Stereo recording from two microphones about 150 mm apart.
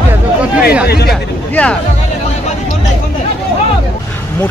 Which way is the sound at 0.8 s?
90° left.